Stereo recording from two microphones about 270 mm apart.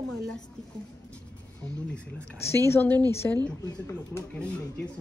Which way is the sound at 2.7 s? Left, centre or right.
Centre.